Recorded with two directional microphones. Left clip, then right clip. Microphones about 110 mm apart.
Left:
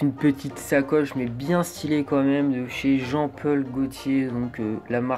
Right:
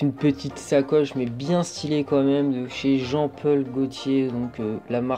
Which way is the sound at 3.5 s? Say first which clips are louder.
Right 2 dB; 40° right (ahead or behind).